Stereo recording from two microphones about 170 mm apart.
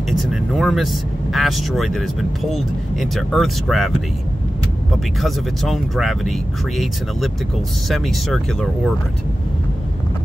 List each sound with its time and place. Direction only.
0.1 s speech: centre (ahead or behind)
5.2 s speech: centre (ahead or behind)
7.9 s speech: centre (ahead or behind)